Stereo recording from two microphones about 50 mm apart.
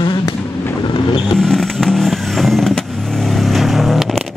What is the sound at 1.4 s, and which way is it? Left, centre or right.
Vehicle, centre.